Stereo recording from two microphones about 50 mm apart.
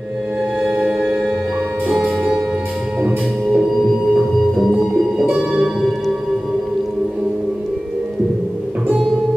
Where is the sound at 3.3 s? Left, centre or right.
Centre.